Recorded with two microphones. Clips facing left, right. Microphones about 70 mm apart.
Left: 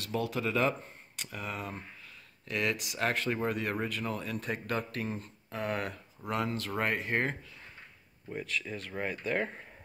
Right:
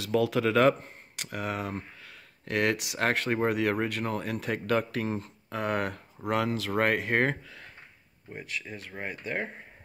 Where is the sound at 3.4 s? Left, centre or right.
Right.